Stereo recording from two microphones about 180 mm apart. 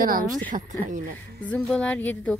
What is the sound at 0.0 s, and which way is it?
Speech, 50° right (ahead or behind).